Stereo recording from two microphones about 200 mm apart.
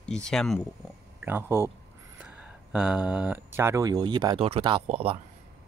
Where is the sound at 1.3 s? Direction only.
10° right (ahead or behind).